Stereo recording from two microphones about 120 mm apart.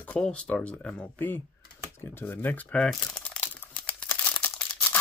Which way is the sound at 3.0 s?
10° left (ahead or behind).